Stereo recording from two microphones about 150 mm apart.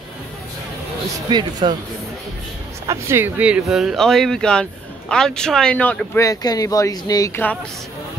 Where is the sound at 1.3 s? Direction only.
30° right (ahead or behind).